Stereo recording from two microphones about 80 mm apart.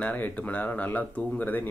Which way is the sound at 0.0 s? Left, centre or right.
Centre.